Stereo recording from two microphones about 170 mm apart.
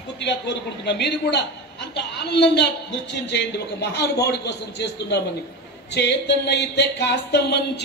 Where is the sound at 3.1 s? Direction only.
90° left.